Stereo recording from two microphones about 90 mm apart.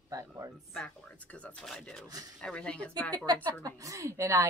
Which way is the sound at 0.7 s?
15° left (ahead or behind).